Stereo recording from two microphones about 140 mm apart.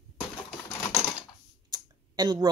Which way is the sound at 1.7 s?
30° right (ahead or behind).